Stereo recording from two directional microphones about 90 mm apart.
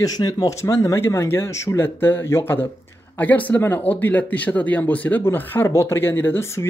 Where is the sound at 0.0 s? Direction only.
45° left (ahead or behind).